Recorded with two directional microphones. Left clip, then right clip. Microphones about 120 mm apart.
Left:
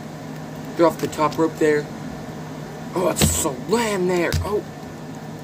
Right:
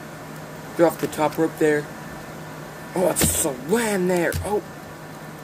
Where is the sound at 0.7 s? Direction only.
45° right (ahead or behind).